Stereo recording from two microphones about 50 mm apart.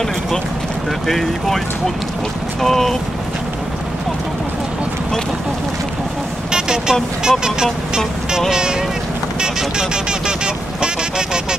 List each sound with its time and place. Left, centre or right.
1.0 s speech: centre
2.6 s speech: centre
6.5 s speech: centre
9.4 s vehicle: centre